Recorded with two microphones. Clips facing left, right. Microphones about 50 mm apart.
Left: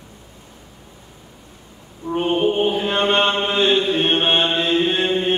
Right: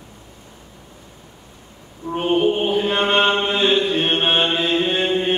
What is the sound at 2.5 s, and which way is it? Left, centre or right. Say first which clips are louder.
Chant: even; centre.